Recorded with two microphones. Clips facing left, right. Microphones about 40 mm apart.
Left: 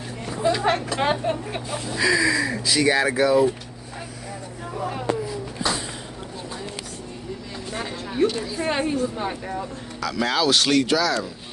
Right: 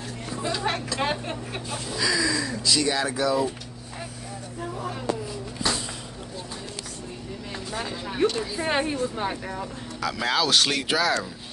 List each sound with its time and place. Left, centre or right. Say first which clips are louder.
0.5 s speech: left 7 dB; left
0.9 s speech: left 5 dB; centre
7.9 s a woman's voice: left 2 dB; centre
8.3 s a woman's voice: left 1 dB; centre
10.9 s speech: left 2 dB; right